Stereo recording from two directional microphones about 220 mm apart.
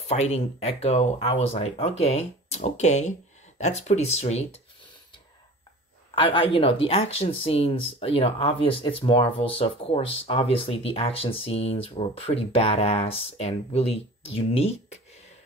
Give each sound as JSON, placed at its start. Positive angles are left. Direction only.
{"t": 0.1, "sound": "speech", "side_deg": 30}
{"t": 6.1, "sound": "speech", "side_deg": 25}